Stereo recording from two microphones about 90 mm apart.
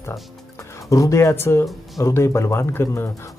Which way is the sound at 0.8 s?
35° left (ahead or behind).